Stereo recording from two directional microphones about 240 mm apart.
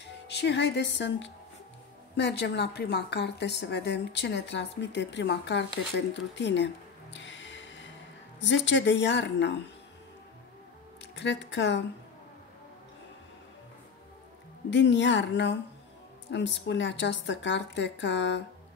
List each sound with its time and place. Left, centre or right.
0.3 s speech: left
6.3 s music: left
8.4 s speech: left
11.1 s speech: left
14.7 s speech: left